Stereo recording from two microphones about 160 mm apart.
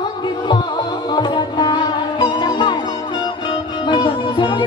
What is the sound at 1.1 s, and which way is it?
Music, 25° left (ahead or behind).